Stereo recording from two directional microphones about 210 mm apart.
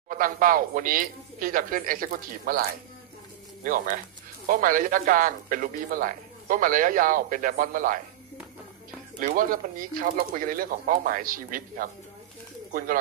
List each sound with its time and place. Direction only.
0.1 s speech: 40° right (ahead or behind)
3.6 s speech: 40° right (ahead or behind)
9.4 s speech: 40° right (ahead or behind)